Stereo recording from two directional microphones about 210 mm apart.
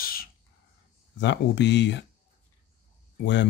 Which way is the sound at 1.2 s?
60° left (ahead or behind).